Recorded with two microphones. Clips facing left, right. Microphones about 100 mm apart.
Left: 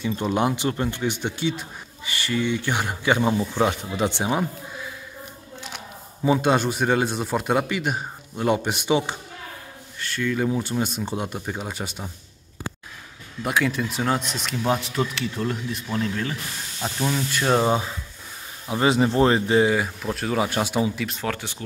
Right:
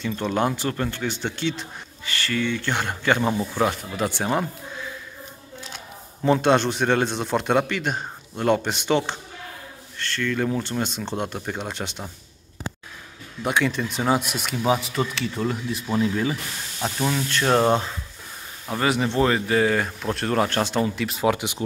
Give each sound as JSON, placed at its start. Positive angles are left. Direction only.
{"t": 0.0, "sound": "speech", "side_deg": 15}
{"t": 3.5, "sound": "speech", "side_deg": 20}
{"t": 4.2, "sound": "speech", "side_deg": 5}
{"t": 6.2, "sound": "speech", "side_deg": 5}
{"t": 13.4, "sound": "speech", "side_deg": 0}
{"t": 14.0, "sound": "speech", "side_deg": -10}
{"t": 18.8, "sound": "speech", "side_deg": 30}
{"t": 19.7, "sound": "speech", "side_deg": 5}
{"t": 21.3, "sound": "speech", "side_deg": -15}